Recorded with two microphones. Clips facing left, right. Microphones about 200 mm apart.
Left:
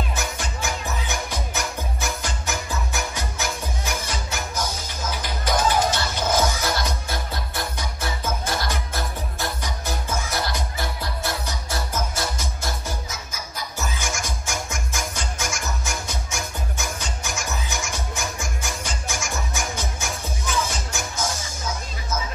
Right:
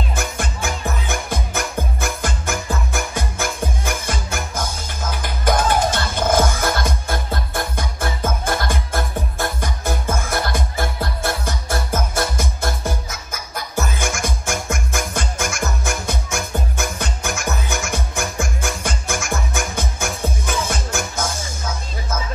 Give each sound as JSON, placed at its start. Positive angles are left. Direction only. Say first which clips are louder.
{"t": 0.1, "sound": "music", "louder": "right 4 dB", "side_deg": -55}